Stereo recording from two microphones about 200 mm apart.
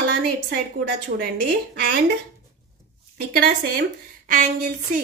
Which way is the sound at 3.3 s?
50° right (ahead or behind).